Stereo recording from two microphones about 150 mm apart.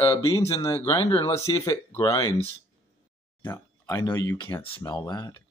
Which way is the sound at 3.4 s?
20° left (ahead or behind).